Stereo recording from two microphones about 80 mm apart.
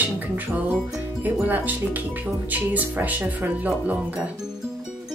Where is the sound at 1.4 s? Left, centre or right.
Right.